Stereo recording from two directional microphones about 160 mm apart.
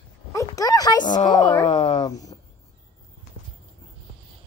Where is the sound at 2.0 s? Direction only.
20° left (ahead or behind).